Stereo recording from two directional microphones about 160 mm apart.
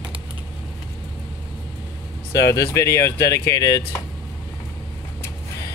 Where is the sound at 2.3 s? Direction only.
20° left (ahead or behind).